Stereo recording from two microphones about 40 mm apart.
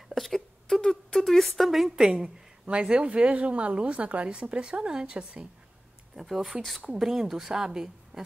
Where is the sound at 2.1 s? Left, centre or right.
Right.